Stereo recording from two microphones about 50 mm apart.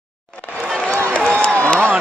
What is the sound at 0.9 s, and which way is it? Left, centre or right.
Crowd, left.